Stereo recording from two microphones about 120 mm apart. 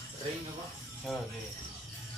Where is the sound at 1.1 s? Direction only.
Centre (ahead or behind).